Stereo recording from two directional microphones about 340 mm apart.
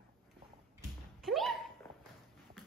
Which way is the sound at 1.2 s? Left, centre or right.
Centre.